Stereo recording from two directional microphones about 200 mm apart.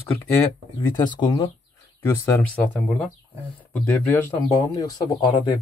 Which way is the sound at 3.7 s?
10° left (ahead or behind).